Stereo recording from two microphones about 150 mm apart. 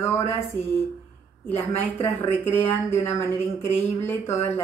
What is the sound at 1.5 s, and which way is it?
Speech, 15° left (ahead or behind).